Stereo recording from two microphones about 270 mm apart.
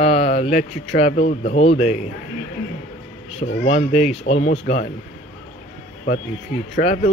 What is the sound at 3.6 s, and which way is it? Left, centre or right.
Speech, left.